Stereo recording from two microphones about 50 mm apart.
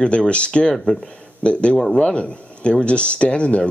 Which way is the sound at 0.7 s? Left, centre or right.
Centre.